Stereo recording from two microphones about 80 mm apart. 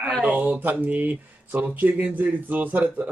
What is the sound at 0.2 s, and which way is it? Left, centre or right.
Speech, centre.